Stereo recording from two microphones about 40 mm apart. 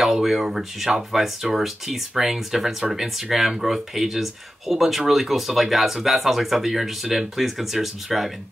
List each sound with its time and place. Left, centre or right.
0.0 s speech: centre